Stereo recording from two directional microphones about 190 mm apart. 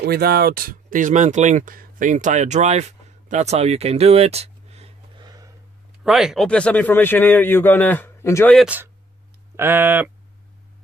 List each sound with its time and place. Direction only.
0.0 s speech: 55° right (ahead or behind); by 5.5 s 20° right (ahead or behind)
6.0 s a man's voice: centre (ahead or behind); by 8.5 s 15° left (ahead or behind)
8.5 s speech: 10° right (ahead or behind)